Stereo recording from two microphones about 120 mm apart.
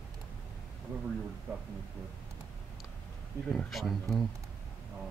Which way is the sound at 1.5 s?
15° right (ahead or behind).